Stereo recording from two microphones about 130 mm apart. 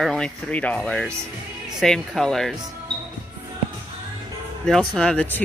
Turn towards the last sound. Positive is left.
turn(degrees=10)  # may be behind; listen again after turning